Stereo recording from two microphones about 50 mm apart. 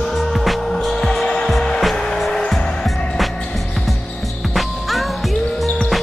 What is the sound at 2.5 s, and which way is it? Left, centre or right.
Music, centre.